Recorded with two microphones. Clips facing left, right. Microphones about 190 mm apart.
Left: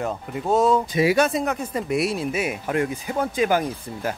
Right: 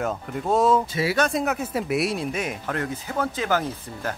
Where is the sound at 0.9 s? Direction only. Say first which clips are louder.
Left 4 dB; 15° left (ahead or behind).